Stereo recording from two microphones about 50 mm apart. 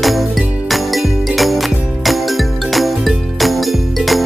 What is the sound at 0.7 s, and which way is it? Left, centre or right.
Jingle bell, centre.